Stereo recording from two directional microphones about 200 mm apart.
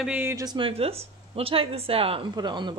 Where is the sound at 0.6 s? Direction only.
30° right (ahead or behind).